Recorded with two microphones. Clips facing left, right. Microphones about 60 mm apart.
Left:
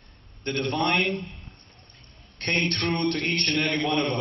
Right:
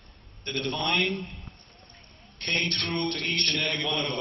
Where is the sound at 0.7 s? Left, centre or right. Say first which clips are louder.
Left 3 dB; left.